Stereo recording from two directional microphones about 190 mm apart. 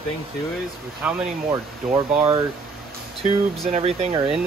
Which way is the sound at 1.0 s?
5° right (ahead or behind).